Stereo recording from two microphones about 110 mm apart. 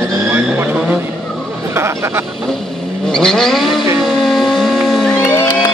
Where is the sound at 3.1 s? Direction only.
5° left (ahead or behind).